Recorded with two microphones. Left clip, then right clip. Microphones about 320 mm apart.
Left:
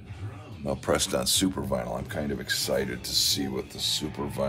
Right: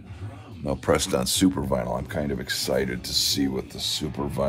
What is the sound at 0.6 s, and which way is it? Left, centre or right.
Speech, right.